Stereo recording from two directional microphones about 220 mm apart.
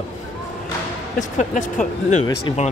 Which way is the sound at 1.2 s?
35° left (ahead or behind).